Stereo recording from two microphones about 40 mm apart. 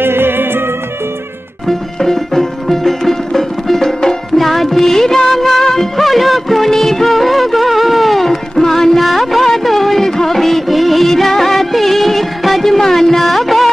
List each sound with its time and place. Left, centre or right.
0.0 s music: right
1.7 s music: centre
4.4 s music of bollywood: centre